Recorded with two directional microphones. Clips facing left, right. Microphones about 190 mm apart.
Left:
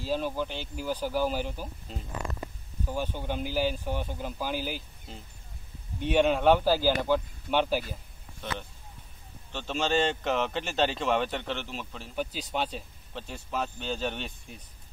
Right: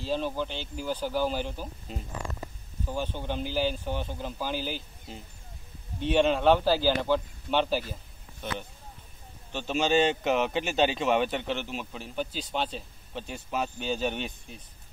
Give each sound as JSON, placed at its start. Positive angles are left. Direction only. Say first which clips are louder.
{"t": 0.0, "sound": "speech", "louder": "even", "side_deg": 5}
{"t": 2.9, "sound": "speech", "louder": "even", "side_deg": 10}
{"t": 8.4, "sound": "a man's voice", "louder": "right 1 dB", "side_deg": -5}
{"t": 12.2, "sound": "speech", "louder": "even", "side_deg": 10}
{"t": 13.1, "sound": "speech", "louder": "right 2 dB", "side_deg": -5}